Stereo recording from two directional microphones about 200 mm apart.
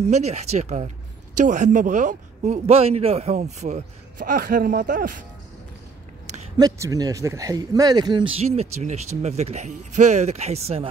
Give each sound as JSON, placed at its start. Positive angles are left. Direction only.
{"t": 0.0, "sound": "a man's voice", "side_deg": -35}
{"t": 6.6, "sound": "a man's voice", "side_deg": -20}